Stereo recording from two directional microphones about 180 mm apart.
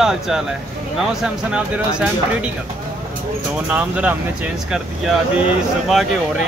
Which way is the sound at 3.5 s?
10° right (ahead or behind).